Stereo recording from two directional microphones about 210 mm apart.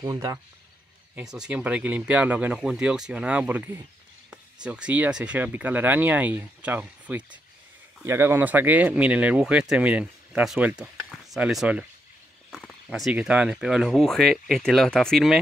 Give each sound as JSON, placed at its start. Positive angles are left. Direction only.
{"t": 0.0, "sound": "speech", "side_deg": -15}
{"t": 1.1, "sound": "speech", "side_deg": -5}